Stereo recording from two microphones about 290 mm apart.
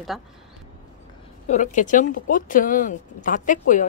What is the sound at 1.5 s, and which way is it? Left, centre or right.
Speech, left.